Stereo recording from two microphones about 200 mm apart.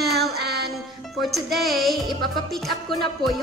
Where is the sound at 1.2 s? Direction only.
Centre (ahead or behind).